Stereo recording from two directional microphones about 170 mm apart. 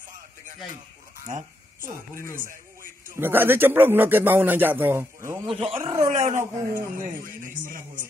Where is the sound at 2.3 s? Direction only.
55° right (ahead or behind).